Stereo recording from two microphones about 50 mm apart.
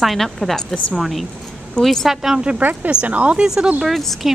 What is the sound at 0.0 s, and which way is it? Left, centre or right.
Speech, centre.